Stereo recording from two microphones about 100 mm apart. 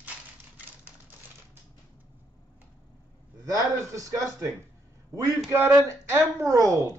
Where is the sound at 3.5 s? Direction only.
35° right (ahead or behind).